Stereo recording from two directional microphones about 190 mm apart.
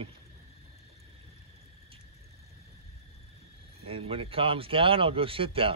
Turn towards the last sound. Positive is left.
turn(degrees=-30)  # may be behind; listen again after turning